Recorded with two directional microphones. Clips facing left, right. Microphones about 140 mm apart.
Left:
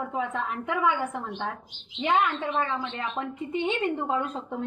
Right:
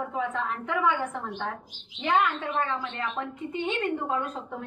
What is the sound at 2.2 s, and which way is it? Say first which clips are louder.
A woman's voice: left 1 dB; 25° left (ahead or behind).